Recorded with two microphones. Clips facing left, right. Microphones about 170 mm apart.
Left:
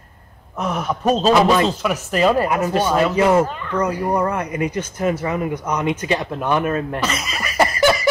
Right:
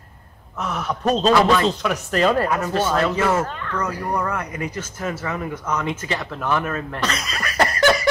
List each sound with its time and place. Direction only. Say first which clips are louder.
0.6 s a man's voice: left 3 dB; 20° left (ahead or behind)
1.8 s speech: left 2 dB; 5° left (ahead or behind)
7.0 s laughter: left 2 dB; 5° left (ahead or behind)